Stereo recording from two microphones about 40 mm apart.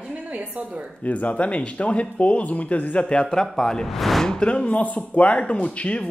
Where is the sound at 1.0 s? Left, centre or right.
Left.